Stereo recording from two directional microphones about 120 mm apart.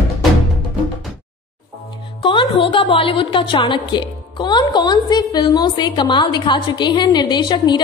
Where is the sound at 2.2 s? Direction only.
40° left (ahead or behind).